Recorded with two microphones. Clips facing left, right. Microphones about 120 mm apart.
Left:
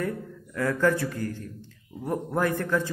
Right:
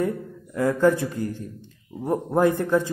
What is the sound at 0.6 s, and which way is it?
A man's voice, 20° right (ahead or behind).